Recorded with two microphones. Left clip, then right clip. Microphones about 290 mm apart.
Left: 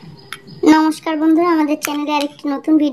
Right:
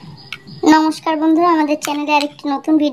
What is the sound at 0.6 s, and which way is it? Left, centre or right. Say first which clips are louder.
Speech: even; centre.